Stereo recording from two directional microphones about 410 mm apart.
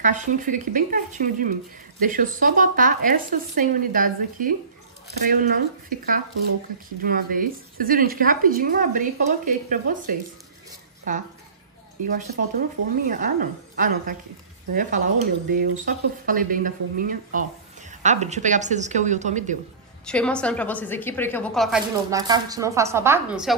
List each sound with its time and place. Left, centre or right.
0.0 s speech: centre
12.5 s speech: centre
20.1 s a woman's voice: centre